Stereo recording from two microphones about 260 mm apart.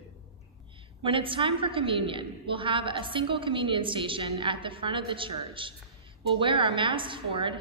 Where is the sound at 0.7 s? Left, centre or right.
Centre.